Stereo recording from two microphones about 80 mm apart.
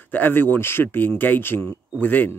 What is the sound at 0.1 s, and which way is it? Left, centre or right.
Speech, left.